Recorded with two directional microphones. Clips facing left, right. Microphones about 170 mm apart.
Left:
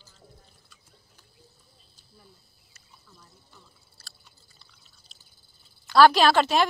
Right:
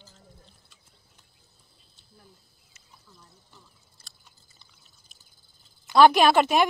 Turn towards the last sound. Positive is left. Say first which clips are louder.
# right 1 dB
turn(degrees=-15)  # may be behind; listen again after turning